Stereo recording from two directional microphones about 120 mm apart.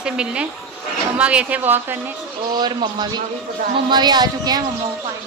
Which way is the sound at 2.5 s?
40° right (ahead or behind).